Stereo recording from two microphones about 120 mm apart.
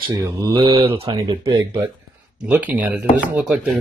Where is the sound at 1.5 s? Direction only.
30° right (ahead or behind).